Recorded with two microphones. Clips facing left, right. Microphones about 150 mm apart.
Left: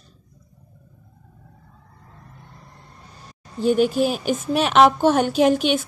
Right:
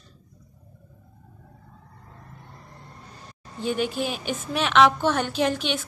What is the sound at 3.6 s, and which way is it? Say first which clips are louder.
A woman's voice: left 8 dB; 40° left (ahead or behind).